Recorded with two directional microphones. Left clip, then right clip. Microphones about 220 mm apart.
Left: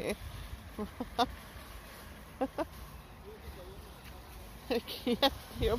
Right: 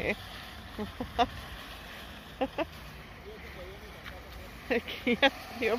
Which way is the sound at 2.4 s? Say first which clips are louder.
Right 3 dB; 15° left (ahead or behind).